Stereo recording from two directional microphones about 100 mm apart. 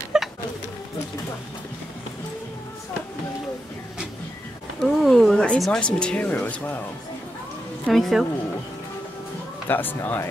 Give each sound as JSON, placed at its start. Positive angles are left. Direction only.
{"t": 0.1, "sound": "a sound", "side_deg": -5}
{"t": 4.7, "sound": "speech", "side_deg": 0}
{"t": 7.8, "sound": "a woman's voice", "side_deg": 0}
{"t": 9.7, "sound": "speech", "side_deg": 20}